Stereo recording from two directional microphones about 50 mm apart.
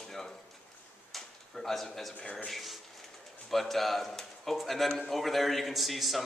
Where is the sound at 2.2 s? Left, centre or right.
Left.